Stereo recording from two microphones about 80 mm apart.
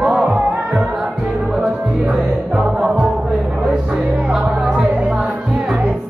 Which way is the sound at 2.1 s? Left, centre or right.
Centre.